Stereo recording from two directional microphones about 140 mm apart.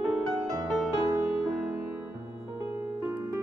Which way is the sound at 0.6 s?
5° right (ahead or behind).